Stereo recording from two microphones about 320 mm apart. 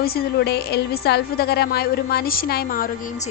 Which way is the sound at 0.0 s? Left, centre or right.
Left.